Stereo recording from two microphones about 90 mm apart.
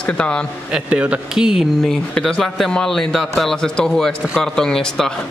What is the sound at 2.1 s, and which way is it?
A man's voice, 10° left (ahead or behind).